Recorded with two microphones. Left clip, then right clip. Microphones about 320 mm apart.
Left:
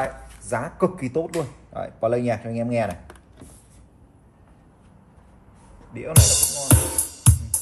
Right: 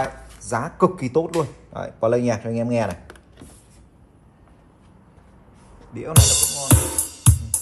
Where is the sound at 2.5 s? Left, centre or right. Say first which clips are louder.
Right 3 dB; right.